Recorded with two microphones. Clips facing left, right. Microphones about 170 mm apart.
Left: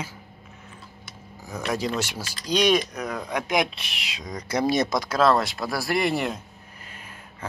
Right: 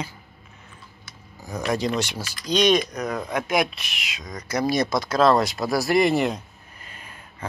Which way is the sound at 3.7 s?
30° left (ahead or behind).